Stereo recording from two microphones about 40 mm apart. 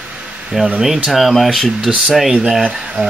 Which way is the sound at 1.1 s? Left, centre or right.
Centre.